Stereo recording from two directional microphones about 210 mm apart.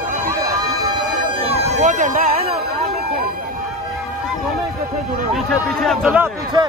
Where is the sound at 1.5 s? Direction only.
40° right (ahead or behind).